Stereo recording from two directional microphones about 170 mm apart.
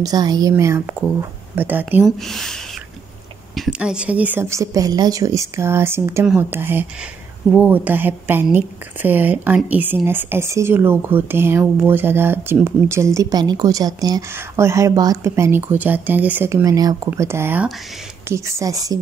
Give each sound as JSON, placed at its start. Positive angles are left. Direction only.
{"t": 0.0, "sound": "a woman's voice", "side_deg": -25}
{"t": 2.0, "sound": "a woman's voice", "side_deg": 0}